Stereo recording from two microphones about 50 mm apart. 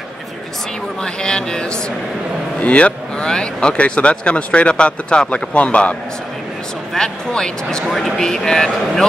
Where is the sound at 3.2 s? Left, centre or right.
Centre.